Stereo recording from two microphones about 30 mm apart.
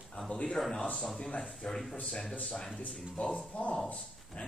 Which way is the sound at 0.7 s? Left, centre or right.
Left.